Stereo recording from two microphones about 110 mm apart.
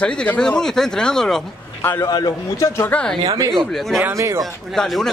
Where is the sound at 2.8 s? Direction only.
10° left (ahead or behind).